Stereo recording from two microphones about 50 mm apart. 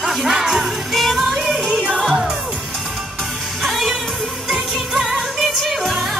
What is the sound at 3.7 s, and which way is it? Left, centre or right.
Music, centre.